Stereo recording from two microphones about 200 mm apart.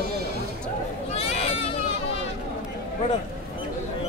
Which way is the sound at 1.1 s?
30° left (ahead or behind).